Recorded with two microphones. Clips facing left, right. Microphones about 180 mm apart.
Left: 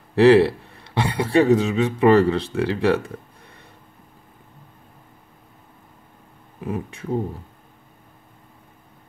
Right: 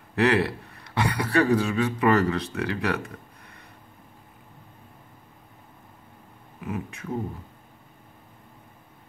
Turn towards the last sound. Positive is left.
turn(degrees=30)  # may be behind; listen again after turning